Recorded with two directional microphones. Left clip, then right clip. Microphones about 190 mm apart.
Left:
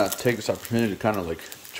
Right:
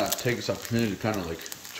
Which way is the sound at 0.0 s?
25° left (ahead or behind).